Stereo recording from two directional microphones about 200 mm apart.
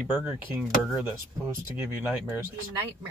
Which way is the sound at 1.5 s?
15° right (ahead or behind).